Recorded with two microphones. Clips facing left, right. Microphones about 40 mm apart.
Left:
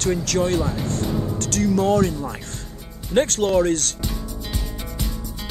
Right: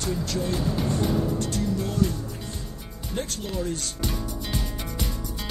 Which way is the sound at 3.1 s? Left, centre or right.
Left.